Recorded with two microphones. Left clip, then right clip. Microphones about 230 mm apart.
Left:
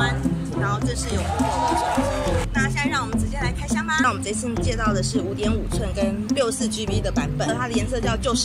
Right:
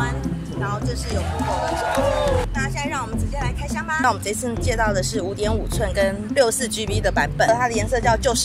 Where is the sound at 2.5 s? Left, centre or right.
Centre.